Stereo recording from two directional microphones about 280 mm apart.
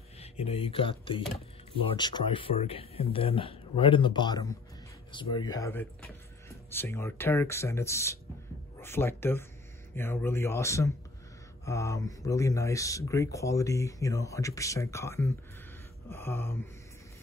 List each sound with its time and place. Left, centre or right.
0.2 s speech: left